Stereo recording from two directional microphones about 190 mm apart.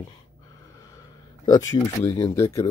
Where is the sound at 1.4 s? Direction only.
20° left (ahead or behind).